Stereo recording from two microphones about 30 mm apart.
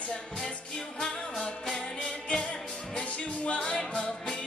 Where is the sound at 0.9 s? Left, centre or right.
Centre.